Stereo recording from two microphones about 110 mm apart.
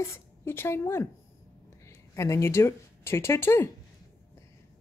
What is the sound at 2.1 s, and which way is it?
A woman's voice, 25° left (ahead or behind).